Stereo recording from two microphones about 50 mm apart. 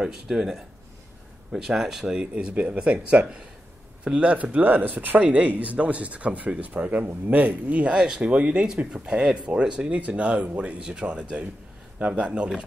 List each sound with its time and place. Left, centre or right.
0.0 s speech: centre
2.1 s speech: right